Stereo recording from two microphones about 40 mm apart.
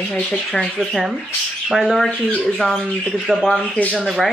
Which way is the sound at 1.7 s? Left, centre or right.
Centre.